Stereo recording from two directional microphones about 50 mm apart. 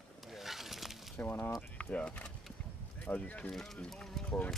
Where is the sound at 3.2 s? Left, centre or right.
Left.